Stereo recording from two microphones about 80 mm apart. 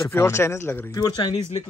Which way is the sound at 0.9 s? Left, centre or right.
Left.